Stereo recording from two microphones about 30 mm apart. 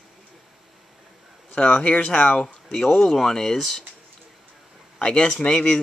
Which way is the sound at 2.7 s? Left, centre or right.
Centre.